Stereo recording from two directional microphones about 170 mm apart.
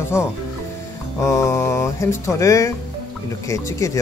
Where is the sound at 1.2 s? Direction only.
15° left (ahead or behind).